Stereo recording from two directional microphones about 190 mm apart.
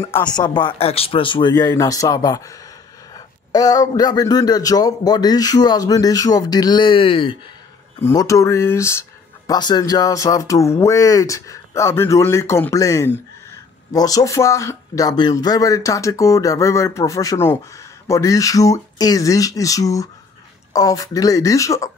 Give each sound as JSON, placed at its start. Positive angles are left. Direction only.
{"t": 0.0, "sound": "a man's voice", "side_deg": 20}
{"t": 3.5, "sound": "a man's voice", "side_deg": 20}
{"t": 8.0, "sound": "speech", "side_deg": 15}